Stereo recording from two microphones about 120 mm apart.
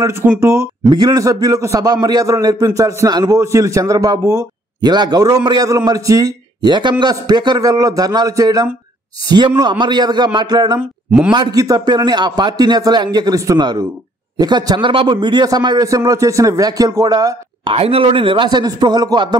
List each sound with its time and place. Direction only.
0.0 s a man's voice: 20° right (ahead or behind)
0.8 s a man's voice: 35° right (ahead or behind)
10.8 s speech: 10° right (ahead or behind)
11.3 s a man's voice: 35° right (ahead or behind)
17.6 s speech: 55° right (ahead or behind); by 19.3 s 35° right (ahead or behind)